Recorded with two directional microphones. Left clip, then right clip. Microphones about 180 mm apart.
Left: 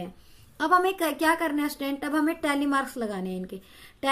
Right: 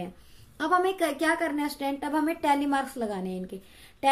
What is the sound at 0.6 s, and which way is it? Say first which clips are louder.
A woman's voice: left 2 dB; 10° left (ahead or behind).